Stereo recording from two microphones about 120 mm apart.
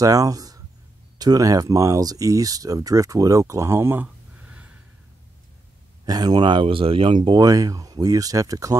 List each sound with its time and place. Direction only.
0.0 s speech: 30° right (ahead or behind); by 4.6 s 15° right (ahead or behind)
6.0 s speech: 35° right (ahead or behind)